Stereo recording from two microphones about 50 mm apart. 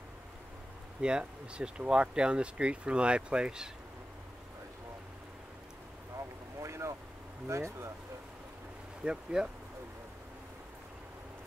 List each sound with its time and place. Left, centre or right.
1.0 s speech: centre
6.6 s vehicle: right
7.4 s speech: right
9.0 s speech: centre